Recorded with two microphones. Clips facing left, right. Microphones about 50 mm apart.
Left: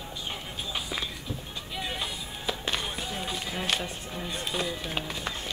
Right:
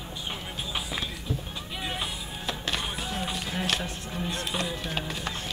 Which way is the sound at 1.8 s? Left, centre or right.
Centre.